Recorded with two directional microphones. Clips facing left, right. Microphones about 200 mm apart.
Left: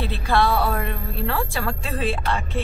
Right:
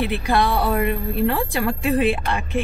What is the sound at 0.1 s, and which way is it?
A woman's voice, 15° right (ahead or behind).